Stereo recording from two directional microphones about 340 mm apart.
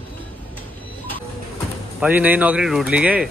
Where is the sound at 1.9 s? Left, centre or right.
Centre.